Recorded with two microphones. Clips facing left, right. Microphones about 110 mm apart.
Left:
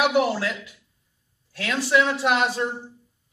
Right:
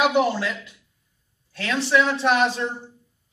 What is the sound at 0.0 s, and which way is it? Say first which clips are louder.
A man's voice: right 1 dB; 10° left (ahead or behind).